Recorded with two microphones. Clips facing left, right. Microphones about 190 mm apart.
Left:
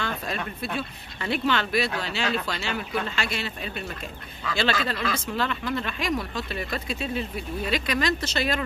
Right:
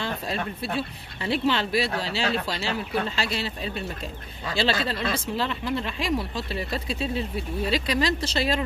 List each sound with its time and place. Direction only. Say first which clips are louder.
0.0 s speech: right 1 dB; 30° right (ahead or behind)